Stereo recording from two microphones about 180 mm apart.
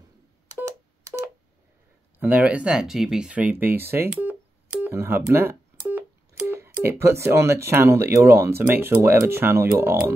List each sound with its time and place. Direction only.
0.6 s telephone dialing: 15° right (ahead or behind)
2.1 s speech: 10° right (ahead or behind)